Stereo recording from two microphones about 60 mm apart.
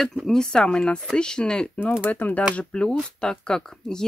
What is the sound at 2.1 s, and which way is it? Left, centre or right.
Speech, left.